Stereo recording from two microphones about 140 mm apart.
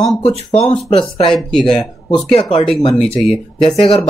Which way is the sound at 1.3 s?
5° left (ahead or behind).